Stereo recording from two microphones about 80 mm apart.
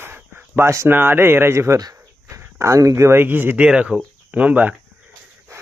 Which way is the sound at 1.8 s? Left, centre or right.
Right.